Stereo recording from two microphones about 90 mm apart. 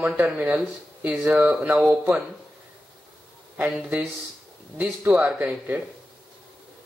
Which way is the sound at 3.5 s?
20° right (ahead or behind).